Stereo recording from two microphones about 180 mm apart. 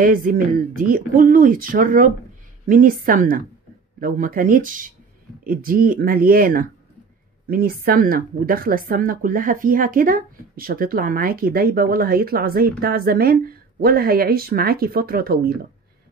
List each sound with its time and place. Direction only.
0.0 s a woman's voice: 50° right (ahead or behind)